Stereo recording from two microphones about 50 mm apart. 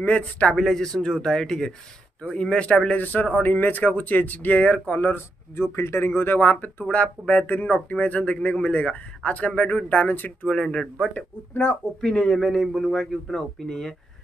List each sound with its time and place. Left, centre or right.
0.0 s speech: left
0.6 s a man's voice: centre; by 3.0 s left
3.0 s speech: left
5.1 s speech: left
6.8 s speech: left
10.5 s a man's voice: centre
11.1 s speech: left
12.0 s a man's voice: centre
12.4 s speech: centre
12.9 s a man's voice: centre